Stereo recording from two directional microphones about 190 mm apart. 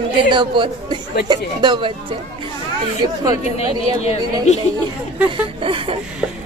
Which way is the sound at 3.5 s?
35° left (ahead or behind).